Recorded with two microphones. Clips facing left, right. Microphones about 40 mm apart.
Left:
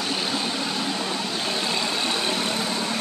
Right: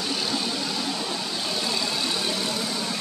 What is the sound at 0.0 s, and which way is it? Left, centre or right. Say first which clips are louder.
Vehicle: left 1 dB; left.